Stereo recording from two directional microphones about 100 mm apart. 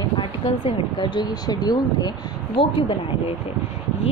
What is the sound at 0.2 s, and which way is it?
Speech, 50° left (ahead or behind).